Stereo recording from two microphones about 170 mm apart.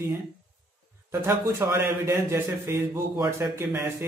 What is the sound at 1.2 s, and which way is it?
A man's voice, 15° right (ahead or behind).